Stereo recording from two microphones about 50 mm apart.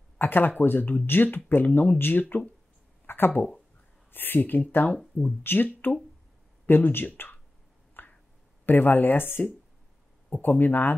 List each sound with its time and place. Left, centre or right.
0.2 s speech: left
3.1 s a sound: left
4.1 s speech: left
8.0 s finger snapping: left
8.6 s speech: left